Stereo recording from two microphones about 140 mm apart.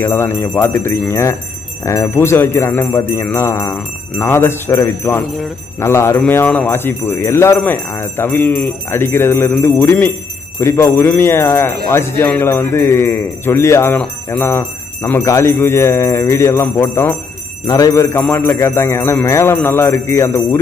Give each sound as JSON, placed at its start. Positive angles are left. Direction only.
{"t": 0.0, "sound": "speech", "side_deg": 15}
{"t": 1.9, "sound": "jingle bell", "side_deg": 20}
{"t": 4.2, "sound": "speech", "side_deg": 15}
{"t": 15.0, "sound": "jingle bell", "side_deg": 20}